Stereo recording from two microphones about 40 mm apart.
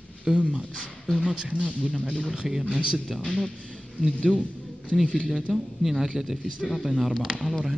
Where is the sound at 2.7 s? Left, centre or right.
Right.